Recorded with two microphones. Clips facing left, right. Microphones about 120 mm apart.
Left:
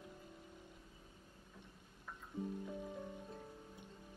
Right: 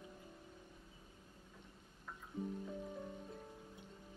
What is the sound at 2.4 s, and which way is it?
Music, 20° left (ahead or behind).